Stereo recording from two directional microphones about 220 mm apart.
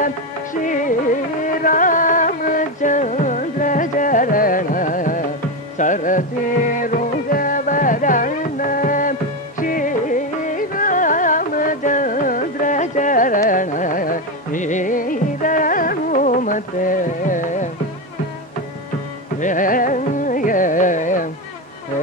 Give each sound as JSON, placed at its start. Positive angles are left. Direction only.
{"t": 0.7, "sound": "music", "side_deg": 35}
{"t": 19.4, "sound": "music", "side_deg": 35}